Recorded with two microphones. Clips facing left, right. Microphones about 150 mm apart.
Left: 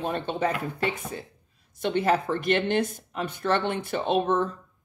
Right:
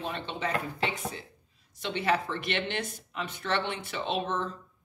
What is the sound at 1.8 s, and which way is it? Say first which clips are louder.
Speech: left 5 dB; 50° left (ahead or behind).